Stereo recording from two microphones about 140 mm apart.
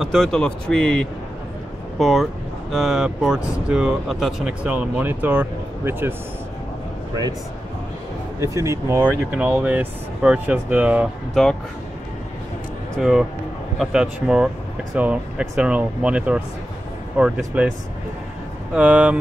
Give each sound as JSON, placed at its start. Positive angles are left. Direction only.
{"t": 0.0, "sound": "speech", "side_deg": 0}
{"t": 8.4, "sound": "speech", "side_deg": -20}
{"t": 9.3, "sound": "speech", "side_deg": -10}
{"t": 12.9, "sound": "speech", "side_deg": -5}
{"t": 18.8, "sound": "speech", "side_deg": -10}